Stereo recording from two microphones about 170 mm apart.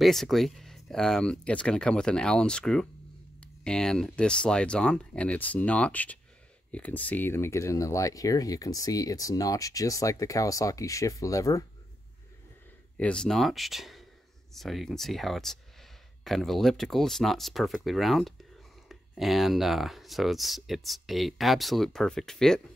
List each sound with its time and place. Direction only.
0.0 s speech: centre (ahead or behind); by 11.6 s 20° left (ahead or behind)
12.9 s speech: 5° left (ahead or behind)